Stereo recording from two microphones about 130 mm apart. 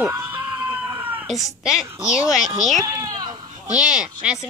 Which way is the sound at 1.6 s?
5° right (ahead or behind).